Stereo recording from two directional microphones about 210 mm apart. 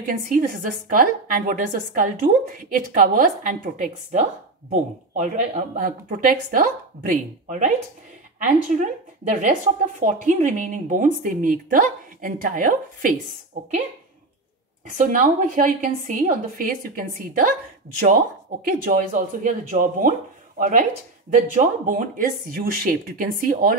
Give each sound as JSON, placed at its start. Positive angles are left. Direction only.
{"t": 0.0, "sound": "a woman's voice", "side_deg": -40}
{"t": 9.3, "sound": "a woman's voice", "side_deg": -40}
{"t": 14.9, "sound": "a woman's voice", "side_deg": -40}